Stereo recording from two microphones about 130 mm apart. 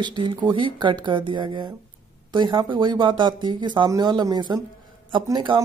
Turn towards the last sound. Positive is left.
turn(degrees=-40)  # may be behind; listen again after turning